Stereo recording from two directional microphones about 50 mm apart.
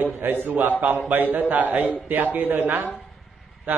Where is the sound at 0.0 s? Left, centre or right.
Right.